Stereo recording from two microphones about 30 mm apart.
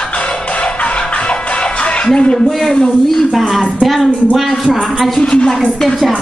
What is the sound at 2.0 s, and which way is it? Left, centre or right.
Speech, left.